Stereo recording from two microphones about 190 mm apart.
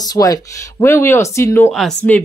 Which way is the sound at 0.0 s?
20° left (ahead or behind).